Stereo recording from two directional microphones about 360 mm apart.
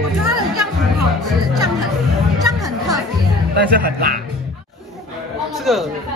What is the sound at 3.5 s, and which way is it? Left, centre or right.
Speech, right.